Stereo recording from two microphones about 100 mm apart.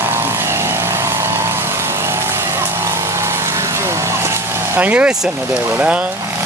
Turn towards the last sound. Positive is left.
turn(degrees=-15)  # may be behind; listen again after turning